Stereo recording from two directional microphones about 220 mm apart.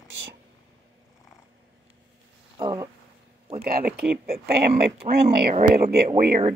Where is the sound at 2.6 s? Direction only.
15° right (ahead or behind).